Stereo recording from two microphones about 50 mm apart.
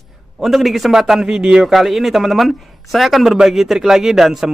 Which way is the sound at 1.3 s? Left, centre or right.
Centre.